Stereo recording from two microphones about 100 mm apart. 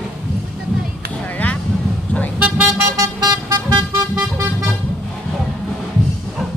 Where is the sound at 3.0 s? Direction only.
35° right (ahead or behind).